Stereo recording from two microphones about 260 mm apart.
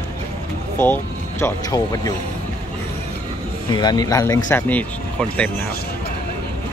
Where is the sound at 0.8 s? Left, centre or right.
Centre.